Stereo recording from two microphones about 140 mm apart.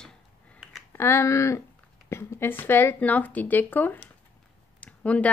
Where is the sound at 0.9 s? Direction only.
20° left (ahead or behind).